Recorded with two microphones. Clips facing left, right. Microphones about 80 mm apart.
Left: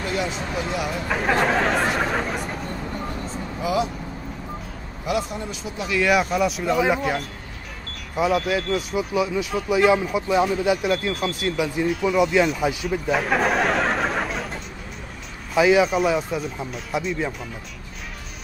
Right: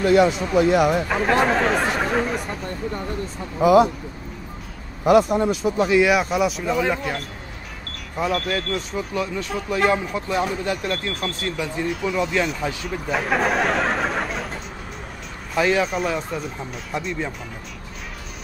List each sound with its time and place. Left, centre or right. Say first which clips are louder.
0.0 s speech: right 10 dB; right
1.0 s speech: right 2 dB; centre
3.6 s speech: right 9 dB; right
5.0 s speech: right 10 dB; right
6.0 s speech: right 1 dB; centre